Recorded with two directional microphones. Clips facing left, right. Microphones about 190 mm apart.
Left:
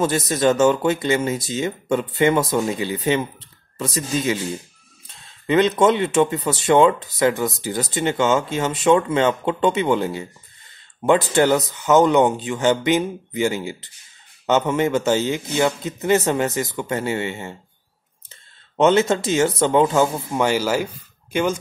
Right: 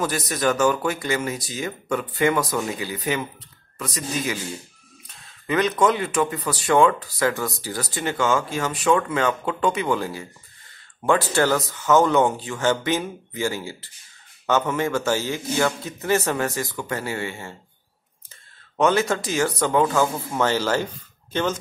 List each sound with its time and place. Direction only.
0.0 s speech: 25° left (ahead or behind)
18.8 s speech: 25° left (ahead or behind)